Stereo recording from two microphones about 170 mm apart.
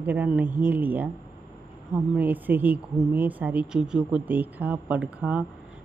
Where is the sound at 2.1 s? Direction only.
10° right (ahead or behind).